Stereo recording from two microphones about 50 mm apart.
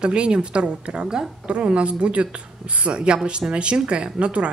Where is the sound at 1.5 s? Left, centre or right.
Right.